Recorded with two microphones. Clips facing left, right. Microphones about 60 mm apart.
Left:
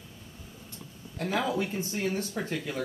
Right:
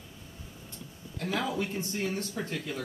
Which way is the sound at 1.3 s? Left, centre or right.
Centre.